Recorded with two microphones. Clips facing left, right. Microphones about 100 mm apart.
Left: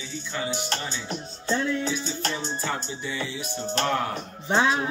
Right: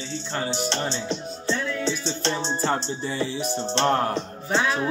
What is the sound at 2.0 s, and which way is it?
Music, 30° right (ahead or behind).